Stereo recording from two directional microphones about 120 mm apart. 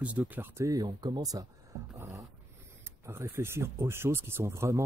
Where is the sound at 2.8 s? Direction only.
20° right (ahead or behind).